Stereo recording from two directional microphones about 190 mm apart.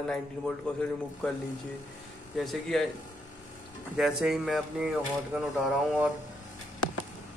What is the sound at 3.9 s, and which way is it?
Speech, centre (ahead or behind).